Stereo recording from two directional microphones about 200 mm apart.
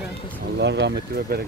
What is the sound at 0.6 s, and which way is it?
Speech, 60° right (ahead or behind).